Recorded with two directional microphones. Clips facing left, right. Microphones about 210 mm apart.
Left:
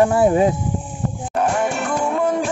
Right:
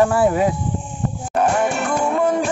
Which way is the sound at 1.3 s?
65° right (ahead or behind).